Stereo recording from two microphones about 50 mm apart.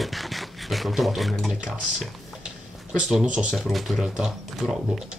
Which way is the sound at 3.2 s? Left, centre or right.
Centre.